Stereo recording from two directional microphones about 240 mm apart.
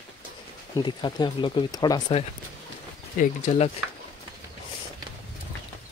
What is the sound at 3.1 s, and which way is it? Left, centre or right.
Speech, left.